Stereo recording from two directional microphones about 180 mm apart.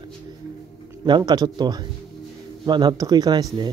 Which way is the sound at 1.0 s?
25° right (ahead or behind).